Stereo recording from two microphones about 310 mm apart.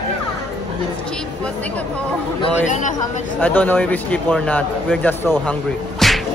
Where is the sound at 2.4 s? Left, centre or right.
Left.